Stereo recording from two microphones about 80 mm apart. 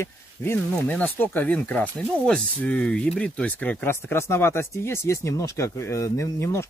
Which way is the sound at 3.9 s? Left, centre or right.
Left.